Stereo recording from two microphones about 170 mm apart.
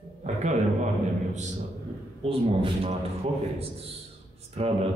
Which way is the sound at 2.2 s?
35° right (ahead or behind).